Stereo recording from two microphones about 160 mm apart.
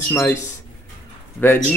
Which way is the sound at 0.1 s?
15° left (ahead or behind).